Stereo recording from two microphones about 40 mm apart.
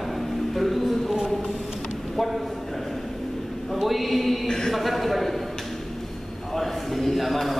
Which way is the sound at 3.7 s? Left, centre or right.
Centre.